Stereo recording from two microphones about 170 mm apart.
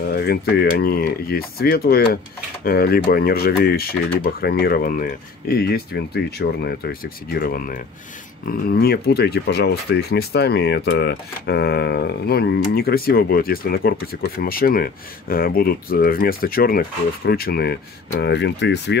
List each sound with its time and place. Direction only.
0.1 s speech: 70° left (ahead or behind)
18.2 s speech: 85° left